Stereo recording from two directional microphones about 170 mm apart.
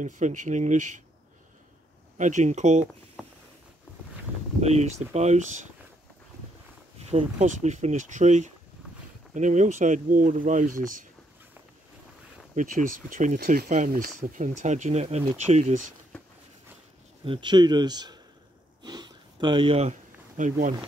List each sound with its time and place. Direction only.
0.0 s speech: 45° right (ahead or behind)
2.1 s speech: 45° right (ahead or behind)
4.6 s speech: 40° right (ahead or behind)
7.0 s speech: 40° right (ahead or behind)
12.5 s speech: 50° right (ahead or behind)
17.2 s speech: 30° right (ahead or behind)
18.9 s a sound: 25° right (ahead or behind); by 20.7 s 50° right (ahead or behind)